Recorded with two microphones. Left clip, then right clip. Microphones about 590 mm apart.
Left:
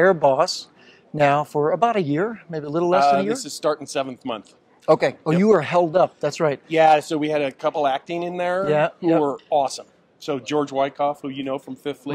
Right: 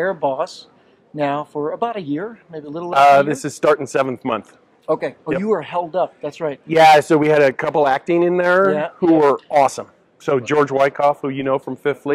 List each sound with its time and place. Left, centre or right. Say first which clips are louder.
0.0 s speech: left 4 dB; left
3.0 s speech: right 11 dB; right
4.8 s speech: left 3 dB; left
6.7 s speech: right 7 dB; right